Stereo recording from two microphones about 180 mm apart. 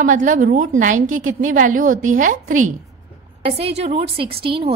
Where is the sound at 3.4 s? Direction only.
35° right (ahead or behind).